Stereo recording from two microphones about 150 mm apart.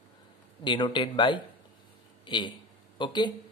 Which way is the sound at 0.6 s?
30° left (ahead or behind).